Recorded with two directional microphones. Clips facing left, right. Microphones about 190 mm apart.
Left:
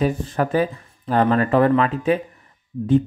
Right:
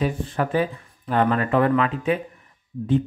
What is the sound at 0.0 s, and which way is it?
Speech, 40° left (ahead or behind).